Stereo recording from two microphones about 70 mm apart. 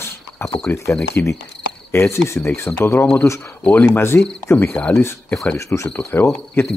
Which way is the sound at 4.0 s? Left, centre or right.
Left.